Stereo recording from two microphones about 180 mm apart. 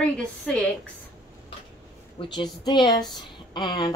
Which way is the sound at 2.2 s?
25° left (ahead or behind).